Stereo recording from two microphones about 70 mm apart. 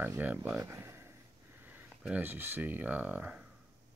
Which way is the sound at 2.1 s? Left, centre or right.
Right.